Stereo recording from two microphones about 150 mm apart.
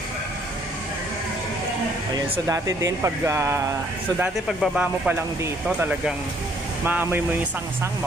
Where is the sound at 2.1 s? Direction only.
25° right (ahead or behind).